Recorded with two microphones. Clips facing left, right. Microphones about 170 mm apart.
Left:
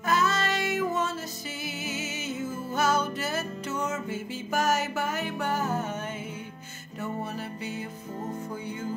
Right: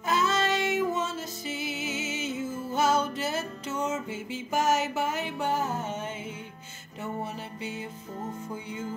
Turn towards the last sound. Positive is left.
turn(degrees=-20)  # may be behind; listen again after turning